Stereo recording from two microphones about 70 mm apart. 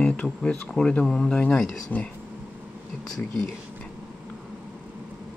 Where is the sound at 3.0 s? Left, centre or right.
Centre.